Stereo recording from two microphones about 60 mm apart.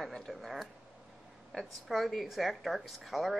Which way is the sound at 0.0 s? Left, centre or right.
Centre.